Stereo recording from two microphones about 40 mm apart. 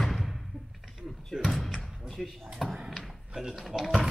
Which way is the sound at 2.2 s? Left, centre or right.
Centre.